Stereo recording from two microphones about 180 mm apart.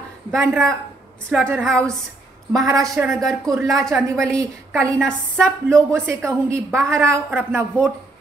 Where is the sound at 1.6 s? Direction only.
5° left (ahead or behind).